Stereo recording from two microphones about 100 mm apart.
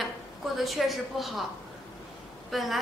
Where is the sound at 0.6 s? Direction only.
Centre (ahead or behind).